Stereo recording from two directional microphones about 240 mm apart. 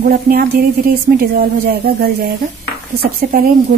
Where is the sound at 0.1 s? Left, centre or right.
Right.